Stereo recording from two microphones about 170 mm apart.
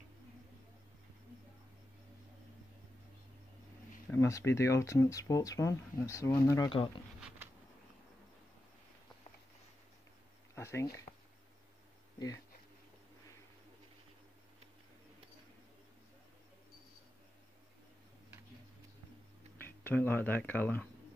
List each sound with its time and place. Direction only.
4.1 s speech: 15° left (ahead or behind)
7.2 s a sound: 5° right (ahead or behind)
10.5 s speech: 15° left (ahead or behind)
19.6 s speech: 10° left (ahead or behind)